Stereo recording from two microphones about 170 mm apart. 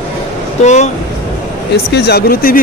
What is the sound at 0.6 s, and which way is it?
Speech, 45° left (ahead or behind).